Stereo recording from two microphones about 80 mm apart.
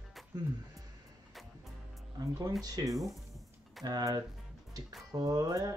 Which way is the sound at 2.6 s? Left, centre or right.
Right.